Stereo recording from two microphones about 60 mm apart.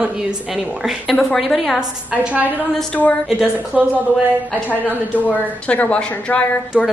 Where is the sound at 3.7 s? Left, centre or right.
Centre.